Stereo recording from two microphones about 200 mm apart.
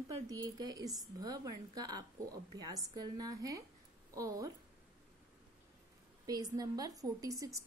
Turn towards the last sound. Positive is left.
turn(degrees=-15)  # may be behind; listen again after turning